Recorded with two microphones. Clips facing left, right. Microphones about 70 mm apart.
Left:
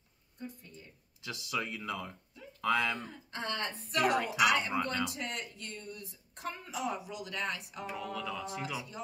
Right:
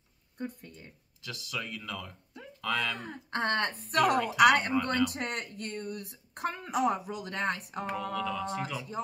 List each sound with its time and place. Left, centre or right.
0.4 s speech: right
1.2 s speech: left
3.0 s speech: right
7.9 s mantra: centre